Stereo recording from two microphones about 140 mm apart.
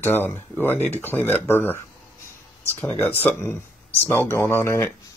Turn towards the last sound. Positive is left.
turn(degrees=20)  # may be behind; listen again after turning